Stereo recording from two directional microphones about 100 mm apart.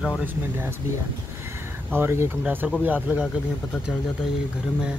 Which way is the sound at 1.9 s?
25° right (ahead or behind).